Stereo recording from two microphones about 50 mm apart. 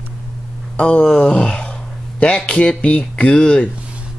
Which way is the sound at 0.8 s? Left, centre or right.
Left.